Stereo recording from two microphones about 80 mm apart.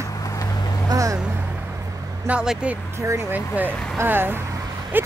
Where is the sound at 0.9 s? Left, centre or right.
Right.